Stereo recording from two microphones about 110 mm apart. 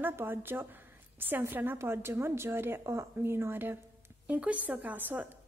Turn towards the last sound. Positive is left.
turn(degrees=-15)  # may be behind; listen again after turning